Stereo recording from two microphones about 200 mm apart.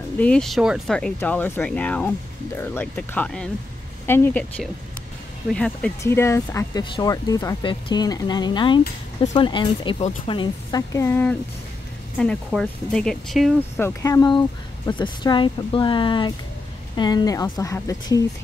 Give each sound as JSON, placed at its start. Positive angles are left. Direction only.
{"t": 0.2, "sound": "speech", "side_deg": 5}
{"t": 13.7, "sound": "speech", "side_deg": 15}